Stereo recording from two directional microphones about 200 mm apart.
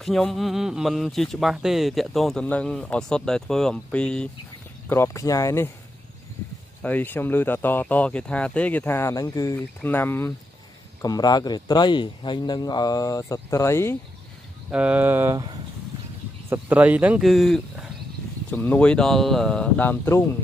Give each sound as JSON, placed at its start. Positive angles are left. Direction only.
{"t": 0.0, "sound": "speech", "side_deg": 0}
{"t": 6.8, "sound": "speech", "side_deg": 10}
{"t": 14.7, "sound": "speech", "side_deg": -5}
{"t": 16.4, "sound": "speech", "side_deg": -10}